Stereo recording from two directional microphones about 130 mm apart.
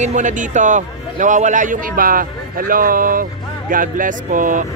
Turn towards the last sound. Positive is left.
turn(degrees=-90)